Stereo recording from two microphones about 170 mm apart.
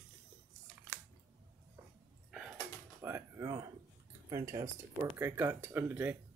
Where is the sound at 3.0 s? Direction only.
15° right (ahead or behind).